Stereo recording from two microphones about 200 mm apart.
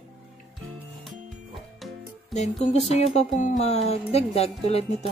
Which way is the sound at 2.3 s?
35° left (ahead or behind).